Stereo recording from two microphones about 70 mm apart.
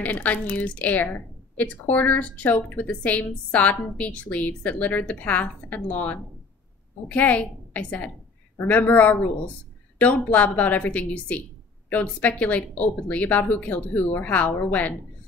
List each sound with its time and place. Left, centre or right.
0.0 s a woman's voice: left